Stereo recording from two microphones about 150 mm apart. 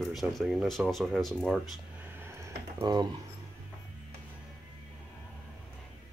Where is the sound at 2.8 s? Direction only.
30° right (ahead or behind).